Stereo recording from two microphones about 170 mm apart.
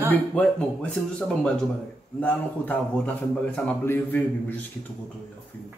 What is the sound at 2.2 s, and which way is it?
A man's voice, 10° left (ahead or behind).